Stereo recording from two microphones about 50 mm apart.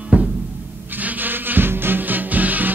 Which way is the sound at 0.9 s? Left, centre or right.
Right.